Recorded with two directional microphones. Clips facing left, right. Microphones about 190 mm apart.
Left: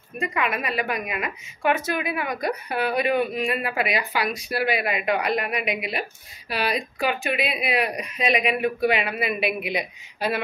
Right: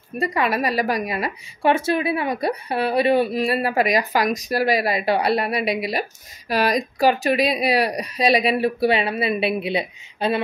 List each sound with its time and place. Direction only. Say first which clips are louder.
0.2 s a woman's voice: right 5 dB; 35° right (ahead or behind)